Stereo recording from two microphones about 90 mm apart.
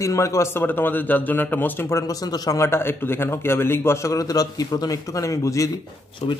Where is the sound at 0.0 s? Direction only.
35° left (ahead or behind).